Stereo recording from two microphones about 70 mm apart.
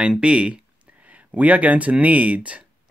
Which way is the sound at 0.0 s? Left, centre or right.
Centre.